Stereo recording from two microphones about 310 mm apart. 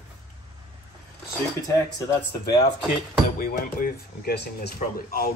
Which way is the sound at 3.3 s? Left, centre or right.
Left.